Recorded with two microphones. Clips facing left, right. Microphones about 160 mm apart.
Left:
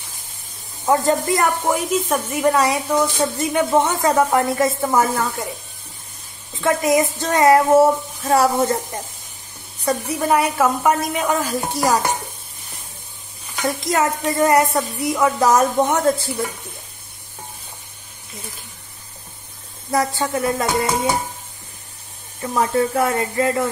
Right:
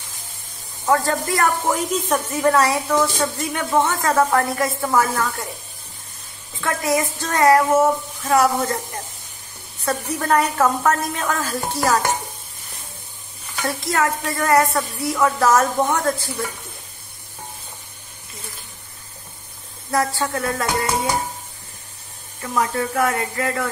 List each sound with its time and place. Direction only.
0.8 s a woman's voice: 20° left (ahead or behind)
6.6 s a woman's voice: 20° left (ahead or behind)
13.6 s a woman's voice: 20° left (ahead or behind)
19.9 s a woman's voice: 20° left (ahead or behind)
22.4 s a woman's voice: 25° left (ahead or behind)